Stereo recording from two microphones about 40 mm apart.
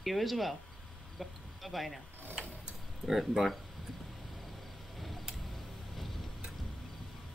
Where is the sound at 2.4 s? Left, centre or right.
Right.